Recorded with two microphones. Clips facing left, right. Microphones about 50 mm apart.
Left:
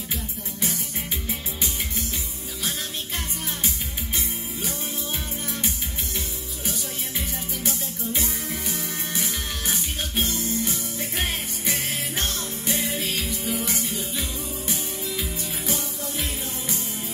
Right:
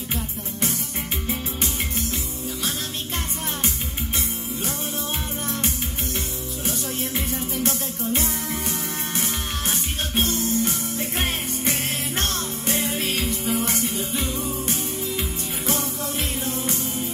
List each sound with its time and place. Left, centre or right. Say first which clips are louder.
10.1 s music: right 4 dB; right
12.2 s music: right 2 dB; right